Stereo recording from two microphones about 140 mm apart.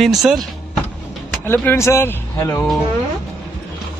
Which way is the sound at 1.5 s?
15° left (ahead or behind).